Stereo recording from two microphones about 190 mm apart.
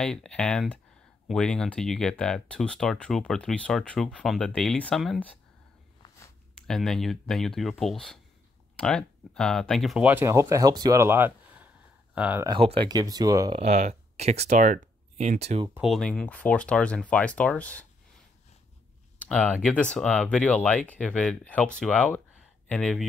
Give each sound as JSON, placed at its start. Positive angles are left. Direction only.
{"t": 0.0, "sound": "speech", "side_deg": 5}
{"t": 6.0, "sound": "a sound", "side_deg": 15}
{"t": 6.5, "sound": "speech", "side_deg": 0}
{"t": 12.4, "sound": "speech", "side_deg": -30}
{"t": 13.6, "sound": "speech", "side_deg": -35}
{"t": 15.7, "sound": "speech", "side_deg": 0}
{"t": 19.2, "sound": "speech", "side_deg": 5}